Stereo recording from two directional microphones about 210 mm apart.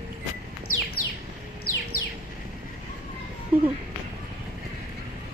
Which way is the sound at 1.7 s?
90° left.